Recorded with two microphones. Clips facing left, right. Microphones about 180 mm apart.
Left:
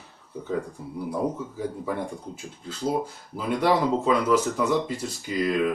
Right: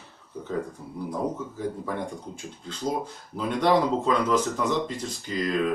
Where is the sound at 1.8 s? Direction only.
5° left (ahead or behind).